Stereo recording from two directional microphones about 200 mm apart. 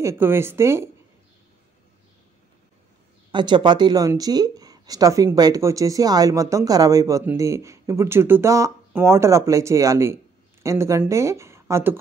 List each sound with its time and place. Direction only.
0.0 s speech: 10° right (ahead or behind)
3.3 s speech: 25° right (ahead or behind)